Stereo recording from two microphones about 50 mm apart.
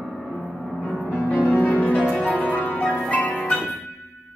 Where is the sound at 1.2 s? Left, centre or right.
Left.